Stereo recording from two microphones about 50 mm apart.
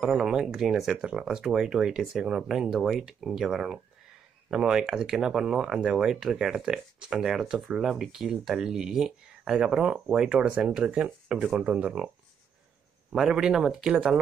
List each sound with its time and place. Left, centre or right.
0.0 s speech: centre
13.1 s speech: centre